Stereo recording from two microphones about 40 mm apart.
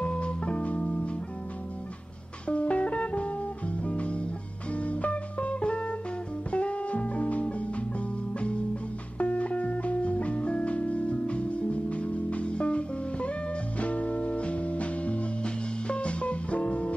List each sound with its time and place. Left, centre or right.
0.0 s music: left
2.4 s music: left